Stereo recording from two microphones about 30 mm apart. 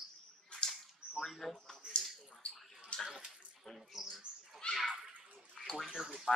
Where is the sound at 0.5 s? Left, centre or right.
Left.